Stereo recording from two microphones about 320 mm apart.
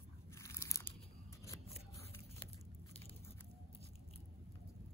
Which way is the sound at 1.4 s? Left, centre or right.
Centre.